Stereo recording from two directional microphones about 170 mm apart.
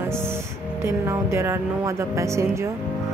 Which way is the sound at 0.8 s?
15° right (ahead or behind).